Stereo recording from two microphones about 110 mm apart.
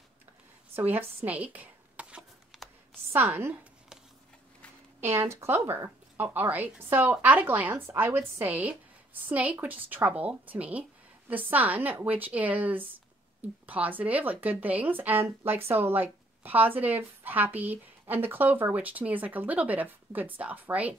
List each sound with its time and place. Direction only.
0.7 s a sound: 20° right (ahead or behind)
3.1 s speech: 20° right (ahead or behind)
5.0 s speech: 20° right (ahead or behind)